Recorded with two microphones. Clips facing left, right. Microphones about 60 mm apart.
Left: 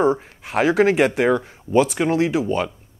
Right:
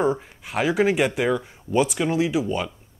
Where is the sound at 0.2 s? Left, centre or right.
Left.